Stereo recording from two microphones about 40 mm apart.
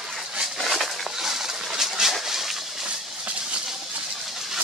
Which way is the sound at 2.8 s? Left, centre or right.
Right.